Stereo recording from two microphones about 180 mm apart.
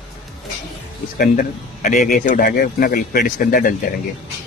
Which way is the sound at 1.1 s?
50° left (ahead or behind).